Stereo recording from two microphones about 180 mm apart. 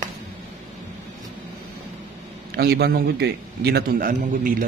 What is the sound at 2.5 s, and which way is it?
A man's voice, 65° right (ahead or behind).